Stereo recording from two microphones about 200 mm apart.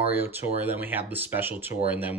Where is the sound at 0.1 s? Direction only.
10° right (ahead or behind).